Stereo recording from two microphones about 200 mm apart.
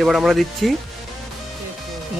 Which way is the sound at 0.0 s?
Centre (ahead or behind).